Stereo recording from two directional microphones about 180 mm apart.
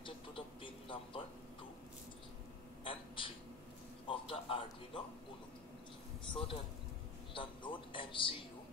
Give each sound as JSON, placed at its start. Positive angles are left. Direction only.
{"t": 0.0, "sound": "music", "side_deg": 30}
{"t": 2.8, "sound": "a sound", "side_deg": 30}
{"t": 6.3, "sound": "speech", "side_deg": 30}
{"t": 7.3, "sound": "music", "side_deg": 25}